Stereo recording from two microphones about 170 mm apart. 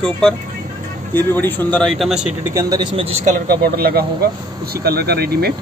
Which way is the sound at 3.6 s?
65° right (ahead or behind).